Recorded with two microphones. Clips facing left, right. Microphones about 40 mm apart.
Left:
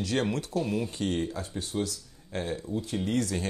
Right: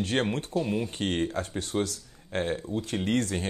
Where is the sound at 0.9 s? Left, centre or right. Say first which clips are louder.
Right 1 dB; right.